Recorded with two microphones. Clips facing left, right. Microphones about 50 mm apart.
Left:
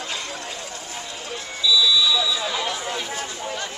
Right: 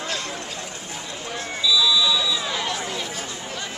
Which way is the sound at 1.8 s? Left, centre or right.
Centre.